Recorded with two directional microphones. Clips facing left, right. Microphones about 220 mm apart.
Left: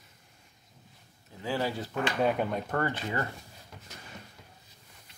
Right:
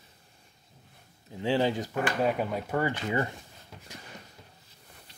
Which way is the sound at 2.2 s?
Centre (ahead or behind).